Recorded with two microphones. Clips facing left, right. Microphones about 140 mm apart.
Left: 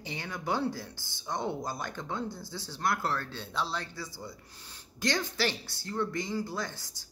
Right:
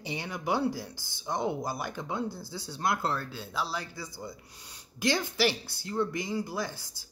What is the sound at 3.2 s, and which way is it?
Speech, 5° right (ahead or behind).